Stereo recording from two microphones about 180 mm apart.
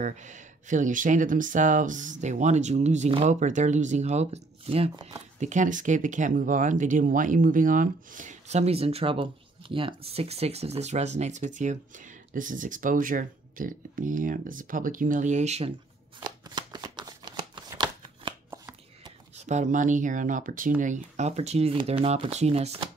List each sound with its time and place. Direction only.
0.0 s speech: 45° right (ahead or behind)
16.2 s shuffling cards: 20° right (ahead or behind)
19.4 s speech: 40° right (ahead or behind)